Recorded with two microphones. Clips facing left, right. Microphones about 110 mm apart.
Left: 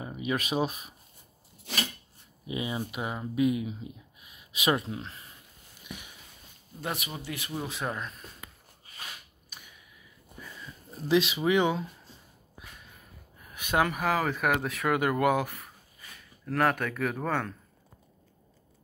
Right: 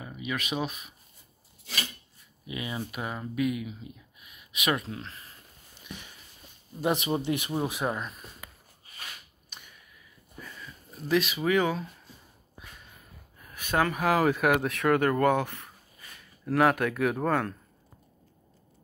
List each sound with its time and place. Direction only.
0.0 s speech: 30° left (ahead or behind)
2.4 s speech: 25° left (ahead or behind)
3.3 s speech: 25° left (ahead or behind)
4.9 s speech: 20° left (ahead or behind)
5.9 s a sound: 10° left (ahead or behind)
6.8 s speech: 20° right (ahead or behind)
9.5 s mechanisms: 5° left (ahead or behind)
10.6 s speech: 30° left (ahead or behind)
13.5 s a sound: 15° left (ahead or behind)
13.9 s speech: centre (ahead or behind)